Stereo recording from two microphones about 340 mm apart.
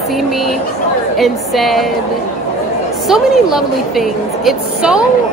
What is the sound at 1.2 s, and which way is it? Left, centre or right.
Speech, centre.